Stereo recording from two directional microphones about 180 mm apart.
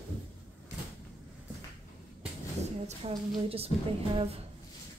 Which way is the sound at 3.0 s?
35° right (ahead or behind).